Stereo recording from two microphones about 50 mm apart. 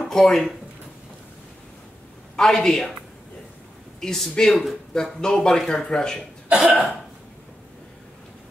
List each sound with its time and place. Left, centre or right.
0.0 s speech: centre
2.4 s speech: centre
4.0 s speech: centre
6.5 s cough: centre